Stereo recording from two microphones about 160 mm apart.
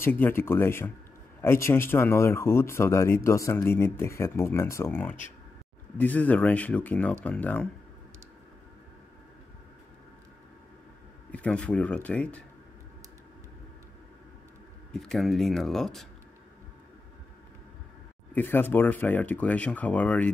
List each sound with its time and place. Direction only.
0.0 s speech: 15° left (ahead or behind)
11.3 s speech: 5° left (ahead or behind)
14.9 s speech: 5° left (ahead or behind)
18.3 s speech: 10° left (ahead or behind)